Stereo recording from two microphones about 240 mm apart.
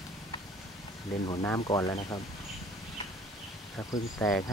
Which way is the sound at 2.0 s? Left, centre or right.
Left.